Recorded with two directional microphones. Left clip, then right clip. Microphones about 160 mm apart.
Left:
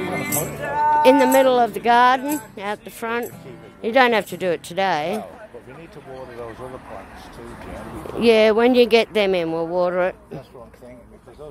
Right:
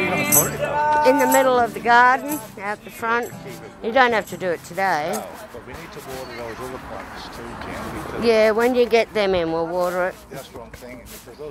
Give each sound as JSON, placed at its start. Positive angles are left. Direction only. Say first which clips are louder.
{"t": 0.0, "sound": "music", "louder": "right 5 dB", "side_deg": -10}
{"t": 1.2, "sound": "speech", "louder": "left 1 dB", "side_deg": 45}
{"t": 2.0, "sound": "speech", "louder": "even", "side_deg": 80}
{"t": 3.0, "sound": "speech", "louder": "right 4 dB", "side_deg": 40}
{"t": 3.8, "sound": "speech", "louder": "left 1 dB", "side_deg": 50}
{"t": 8.2, "sound": "speech", "louder": "left 2 dB", "side_deg": 50}